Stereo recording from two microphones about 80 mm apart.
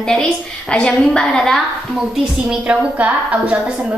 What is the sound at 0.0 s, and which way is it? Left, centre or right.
A woman's voice, centre.